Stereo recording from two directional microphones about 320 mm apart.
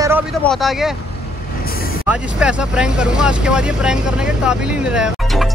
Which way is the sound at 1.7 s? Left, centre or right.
Left.